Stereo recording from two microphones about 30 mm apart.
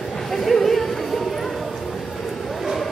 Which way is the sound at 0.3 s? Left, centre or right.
Centre.